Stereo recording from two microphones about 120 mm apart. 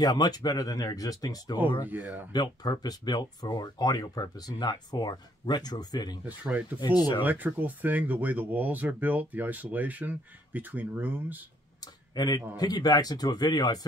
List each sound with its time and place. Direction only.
0.0 s speech: 35° left (ahead or behind)
1.9 s speech: 15° right (ahead or behind)
2.3 s speech: 35° left (ahead or behind)
6.2 s speech: 10° right (ahead or behind)
6.8 s speech: 35° left (ahead or behind)
7.2 s speech: 15° right (ahead or behind)
11.8 s speech: 35° left (ahead or behind)